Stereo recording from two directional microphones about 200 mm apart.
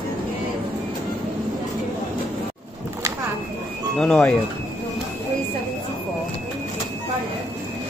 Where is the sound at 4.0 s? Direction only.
5° left (ahead or behind).